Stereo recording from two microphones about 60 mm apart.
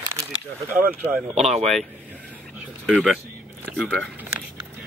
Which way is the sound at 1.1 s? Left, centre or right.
Centre.